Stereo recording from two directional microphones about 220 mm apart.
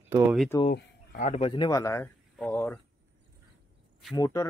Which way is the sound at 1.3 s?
25° left (ahead or behind).